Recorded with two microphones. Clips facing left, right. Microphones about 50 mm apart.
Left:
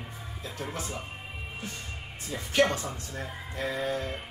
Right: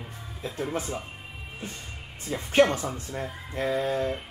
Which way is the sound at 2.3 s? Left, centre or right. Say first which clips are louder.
Right 4 dB; right.